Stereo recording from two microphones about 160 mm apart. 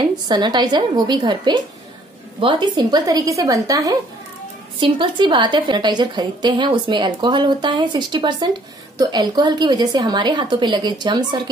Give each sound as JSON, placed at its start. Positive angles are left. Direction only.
{"t": 0.3, "sound": "a woman's voice", "side_deg": -25}